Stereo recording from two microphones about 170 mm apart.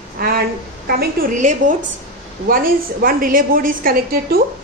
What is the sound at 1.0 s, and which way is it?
A woman's voice, 50° right (ahead or behind).